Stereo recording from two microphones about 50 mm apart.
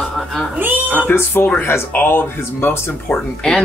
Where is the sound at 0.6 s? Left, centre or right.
Right.